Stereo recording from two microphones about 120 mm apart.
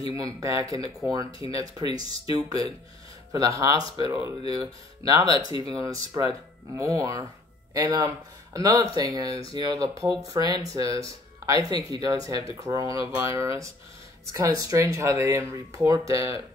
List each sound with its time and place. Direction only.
0.0 s speech: 30° right (ahead or behind)